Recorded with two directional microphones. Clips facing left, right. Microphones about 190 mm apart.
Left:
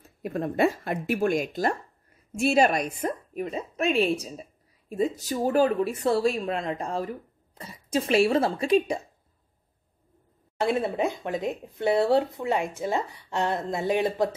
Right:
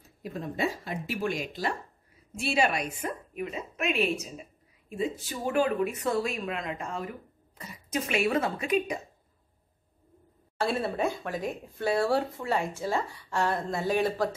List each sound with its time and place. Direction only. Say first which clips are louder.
0.2 s a woman's voice: left 7 dB; 55° left (ahead or behind); by 9.0 s 30° left (ahead or behind)
10.6 s speech: left 3 dB; 20° left (ahead or behind)